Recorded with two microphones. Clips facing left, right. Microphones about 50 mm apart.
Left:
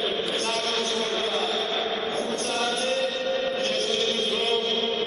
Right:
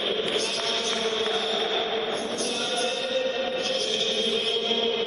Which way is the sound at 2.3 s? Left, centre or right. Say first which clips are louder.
Left 2 dB; left.